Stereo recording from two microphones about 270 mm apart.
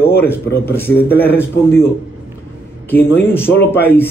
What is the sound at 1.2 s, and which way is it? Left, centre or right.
Speech, centre.